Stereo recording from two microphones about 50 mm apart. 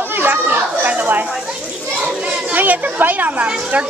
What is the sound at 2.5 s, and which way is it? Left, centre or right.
Speech, right.